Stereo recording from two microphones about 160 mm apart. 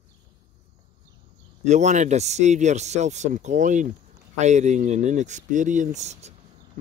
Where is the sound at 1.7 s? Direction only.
45° right (ahead or behind).